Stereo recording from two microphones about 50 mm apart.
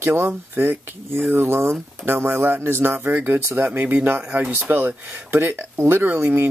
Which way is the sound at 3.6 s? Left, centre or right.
Right.